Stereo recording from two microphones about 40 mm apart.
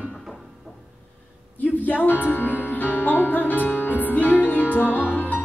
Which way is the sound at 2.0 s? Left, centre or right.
Left.